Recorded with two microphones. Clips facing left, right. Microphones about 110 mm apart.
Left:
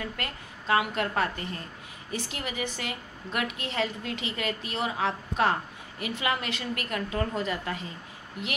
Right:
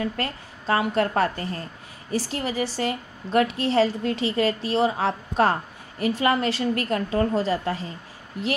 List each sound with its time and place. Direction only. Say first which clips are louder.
0.0 s a woman's voice: right 8 dB; 35° right (ahead or behind)